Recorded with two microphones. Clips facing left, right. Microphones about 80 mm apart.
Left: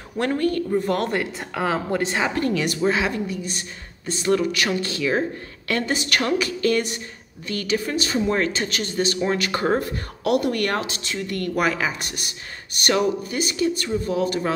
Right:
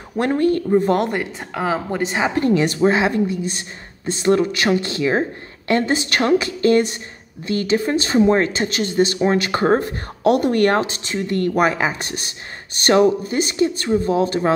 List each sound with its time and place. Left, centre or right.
0.2 s speech: right
1.1 s speech: centre
2.2 s speech: right